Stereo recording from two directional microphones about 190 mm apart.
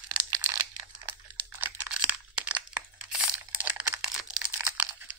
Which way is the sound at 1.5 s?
10° right (ahead or behind).